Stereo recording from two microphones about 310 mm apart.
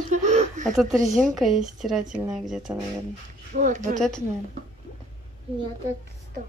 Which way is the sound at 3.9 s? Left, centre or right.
Centre.